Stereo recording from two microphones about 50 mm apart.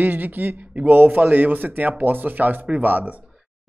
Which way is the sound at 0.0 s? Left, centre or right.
Right.